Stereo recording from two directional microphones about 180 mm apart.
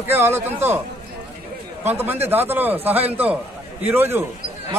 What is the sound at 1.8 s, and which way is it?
A man's voice, 10° right (ahead or behind).